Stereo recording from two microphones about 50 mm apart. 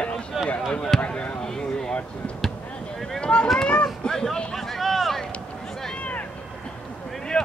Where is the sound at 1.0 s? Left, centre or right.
Left.